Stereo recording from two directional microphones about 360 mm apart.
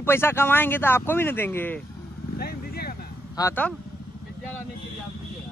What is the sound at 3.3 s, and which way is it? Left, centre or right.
Speech, centre.